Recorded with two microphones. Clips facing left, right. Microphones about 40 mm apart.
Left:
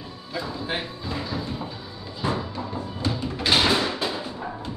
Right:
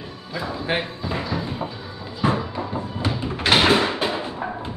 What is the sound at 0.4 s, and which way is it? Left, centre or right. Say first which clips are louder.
Speech: right 4 dB; right.